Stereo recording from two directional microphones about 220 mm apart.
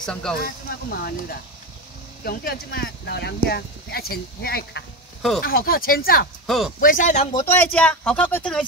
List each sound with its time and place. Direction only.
0.0 s speech: 5° left (ahead or behind)
0.4 s speech: 45° left (ahead or behind)
6.4 s speech: centre (ahead or behind)
6.8 s speech: 40° left (ahead or behind)
7.3 s speech: 10° left (ahead or behind)